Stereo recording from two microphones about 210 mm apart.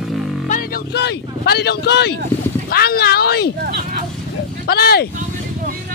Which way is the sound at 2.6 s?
45° left (ahead or behind).